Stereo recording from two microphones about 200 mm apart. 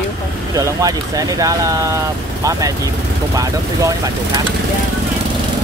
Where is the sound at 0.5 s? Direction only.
15° right (ahead or behind).